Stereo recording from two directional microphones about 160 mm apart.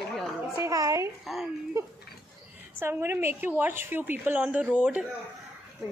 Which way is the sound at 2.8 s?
15° right (ahead or behind).